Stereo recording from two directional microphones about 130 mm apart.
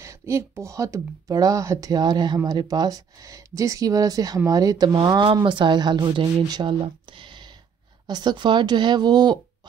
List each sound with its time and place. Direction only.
0.0 s speech: 20° right (ahead or behind)